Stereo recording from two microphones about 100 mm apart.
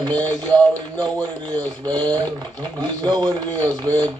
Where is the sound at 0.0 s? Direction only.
45° right (ahead or behind).